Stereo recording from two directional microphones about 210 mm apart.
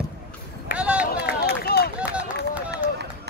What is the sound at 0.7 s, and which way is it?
Run, 5° right (ahead or behind).